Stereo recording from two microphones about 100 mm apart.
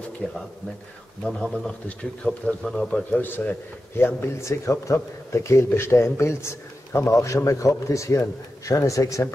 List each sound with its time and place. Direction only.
0.2 s speech: 15° left (ahead or behind)
2.2 s speech: 5° left (ahead or behind)
3.1 s speech: 20° left (ahead or behind)